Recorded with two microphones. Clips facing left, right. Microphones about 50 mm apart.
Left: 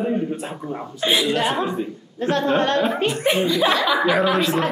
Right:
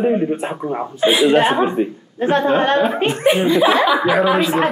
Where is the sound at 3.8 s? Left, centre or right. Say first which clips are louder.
Right 3 dB; centre.